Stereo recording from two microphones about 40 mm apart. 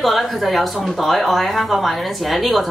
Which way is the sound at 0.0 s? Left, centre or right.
Centre.